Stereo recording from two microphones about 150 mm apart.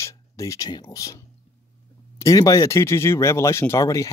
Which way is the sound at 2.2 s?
20° left (ahead or behind).